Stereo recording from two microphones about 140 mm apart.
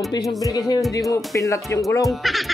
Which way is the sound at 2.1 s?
Centre (ahead or behind).